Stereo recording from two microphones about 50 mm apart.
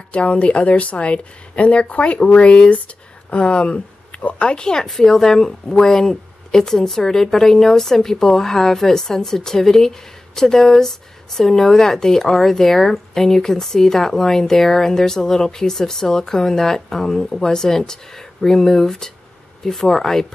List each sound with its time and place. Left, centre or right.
0.1 s a woman's voice: left; by 20.2 s centre